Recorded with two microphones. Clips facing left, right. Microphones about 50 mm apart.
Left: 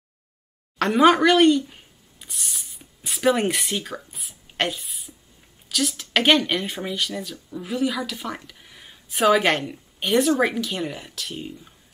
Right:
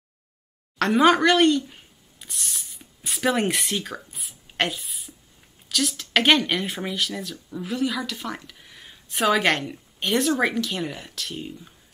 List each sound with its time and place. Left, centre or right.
0.7 s speech: centre